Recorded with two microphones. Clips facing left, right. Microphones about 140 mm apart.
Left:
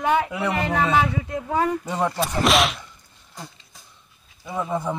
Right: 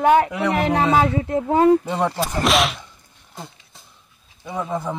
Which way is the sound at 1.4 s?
30° right (ahead or behind).